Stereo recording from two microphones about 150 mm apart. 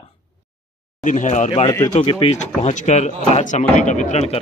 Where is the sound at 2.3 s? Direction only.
55° left (ahead or behind).